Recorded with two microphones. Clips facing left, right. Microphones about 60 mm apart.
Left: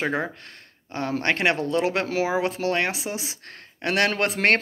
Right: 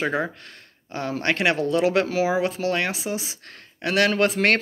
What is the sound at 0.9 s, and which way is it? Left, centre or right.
Speech, left.